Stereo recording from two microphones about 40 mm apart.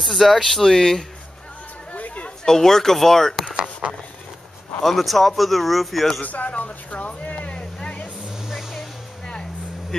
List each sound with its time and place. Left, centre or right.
0.0 s speech: centre
1.9 s chatter: left
2.4 s speech: centre
4.8 s speech: centre
6.2 s vehicle: left
8.7 s music: centre